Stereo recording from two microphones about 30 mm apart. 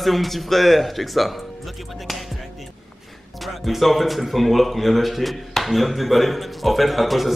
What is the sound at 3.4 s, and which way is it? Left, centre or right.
Speech, centre.